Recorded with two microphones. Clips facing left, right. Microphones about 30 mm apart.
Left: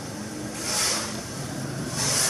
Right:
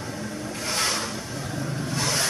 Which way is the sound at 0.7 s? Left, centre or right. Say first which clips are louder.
Right 2 dB; centre.